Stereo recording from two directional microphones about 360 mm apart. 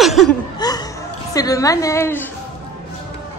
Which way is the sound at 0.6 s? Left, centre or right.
Centre.